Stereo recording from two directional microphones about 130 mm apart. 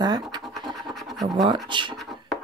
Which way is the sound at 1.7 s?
35° right (ahead or behind).